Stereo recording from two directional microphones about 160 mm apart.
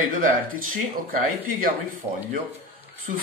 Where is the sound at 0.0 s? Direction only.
60° right (ahead or behind).